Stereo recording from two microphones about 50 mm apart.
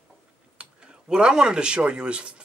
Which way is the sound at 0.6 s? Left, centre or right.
Centre.